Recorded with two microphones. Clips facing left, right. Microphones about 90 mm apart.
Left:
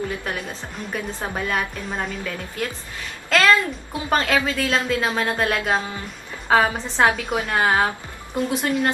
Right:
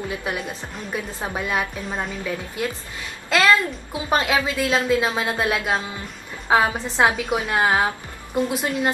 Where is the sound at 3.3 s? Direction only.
5° right (ahead or behind).